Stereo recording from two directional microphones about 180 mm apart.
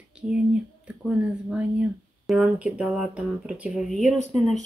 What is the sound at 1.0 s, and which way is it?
Speech, 5° right (ahead or behind).